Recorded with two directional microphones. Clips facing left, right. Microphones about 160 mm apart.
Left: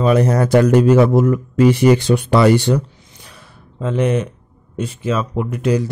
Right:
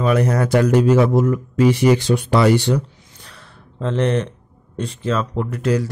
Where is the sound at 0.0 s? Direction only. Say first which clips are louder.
Left 3 dB; 30° left (ahead or behind); by 2.8 s 50° left (ahead or behind).